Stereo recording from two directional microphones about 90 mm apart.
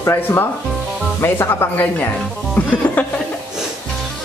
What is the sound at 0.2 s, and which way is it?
Speech, 25° left (ahead or behind).